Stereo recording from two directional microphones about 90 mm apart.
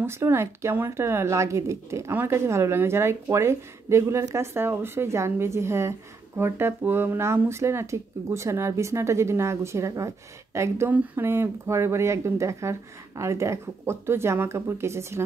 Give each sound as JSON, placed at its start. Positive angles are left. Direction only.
{"t": 0.0, "sound": "speech", "side_deg": -30}
{"t": 10.9, "sound": "speech", "side_deg": -20}